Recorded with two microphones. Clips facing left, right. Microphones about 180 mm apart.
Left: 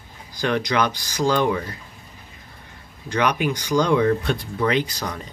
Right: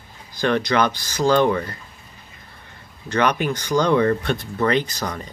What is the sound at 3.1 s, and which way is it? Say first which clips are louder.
Speech: right 1 dB; 10° left (ahead or behind).